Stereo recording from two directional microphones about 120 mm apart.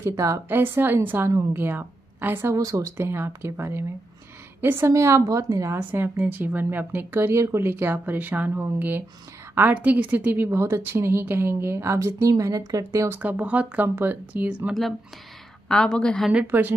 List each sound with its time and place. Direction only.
0.0 s a woman's voice: 25° right (ahead or behind)
2.5 s a woman's voice: 30° right (ahead or behind)
13.2 s speech: 10° right (ahead or behind)
14.7 s a woman's voice: centre (ahead or behind)
16.4 s speech: 15° right (ahead or behind)